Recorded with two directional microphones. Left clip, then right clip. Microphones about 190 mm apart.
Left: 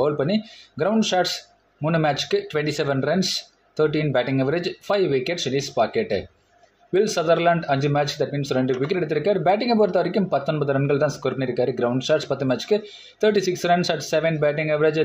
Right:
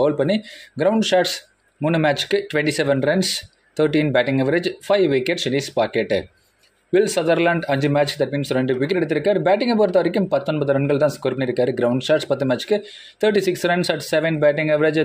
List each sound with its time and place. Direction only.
0.0 s speech: 30° right (ahead or behind)